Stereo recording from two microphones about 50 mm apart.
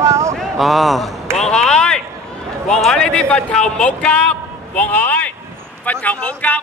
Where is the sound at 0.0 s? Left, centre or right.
Right.